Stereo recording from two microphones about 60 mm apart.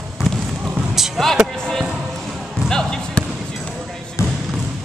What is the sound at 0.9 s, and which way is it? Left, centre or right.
Music, centre.